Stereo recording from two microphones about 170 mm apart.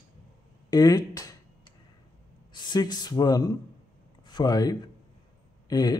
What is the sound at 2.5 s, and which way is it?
Speech, 25° left (ahead or behind).